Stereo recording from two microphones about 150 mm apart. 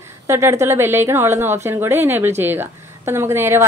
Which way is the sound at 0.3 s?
20° right (ahead or behind).